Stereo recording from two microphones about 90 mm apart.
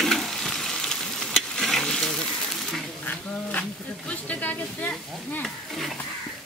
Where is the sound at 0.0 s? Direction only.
Centre (ahead or behind).